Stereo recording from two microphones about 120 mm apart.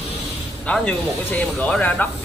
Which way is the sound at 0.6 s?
10° left (ahead or behind).